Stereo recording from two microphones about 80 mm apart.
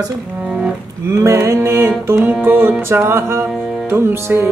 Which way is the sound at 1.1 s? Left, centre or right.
Right.